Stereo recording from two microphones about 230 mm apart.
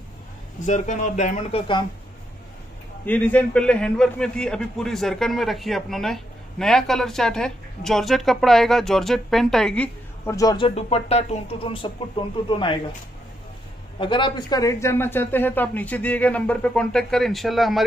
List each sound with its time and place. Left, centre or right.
0.7 s speech: left
3.1 s a man's voice: centre
13.9 s speech: left; by 17.8 s centre